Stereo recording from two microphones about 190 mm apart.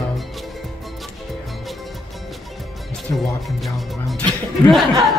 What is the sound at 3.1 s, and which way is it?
Speech, 15° left (ahead or behind).